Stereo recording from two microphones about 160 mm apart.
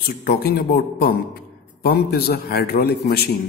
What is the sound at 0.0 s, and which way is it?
A man's voice, 75° left (ahead or behind).